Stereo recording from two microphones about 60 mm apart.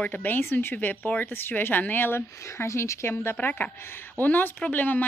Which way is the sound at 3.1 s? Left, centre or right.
Left.